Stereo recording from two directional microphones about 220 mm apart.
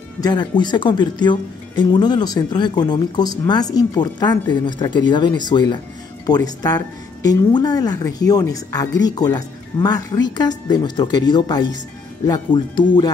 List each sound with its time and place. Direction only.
0.2 s speech: 20° left (ahead or behind)